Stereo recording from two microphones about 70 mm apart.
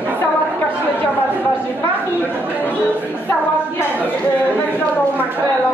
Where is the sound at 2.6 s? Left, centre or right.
Left.